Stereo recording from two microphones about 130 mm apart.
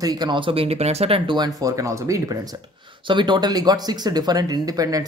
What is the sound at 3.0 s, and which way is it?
Speech, 35° right (ahead or behind).